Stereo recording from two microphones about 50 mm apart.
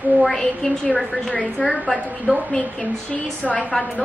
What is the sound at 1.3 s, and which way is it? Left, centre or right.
Speech, left.